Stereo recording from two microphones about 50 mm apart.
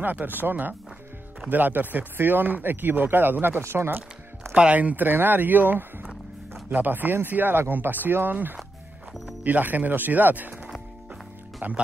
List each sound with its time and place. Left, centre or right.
0.0 s speech: right
4.6 s speech: right
11.6 s speech: right